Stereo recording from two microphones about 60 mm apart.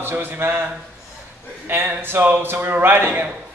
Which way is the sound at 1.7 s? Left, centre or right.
Right.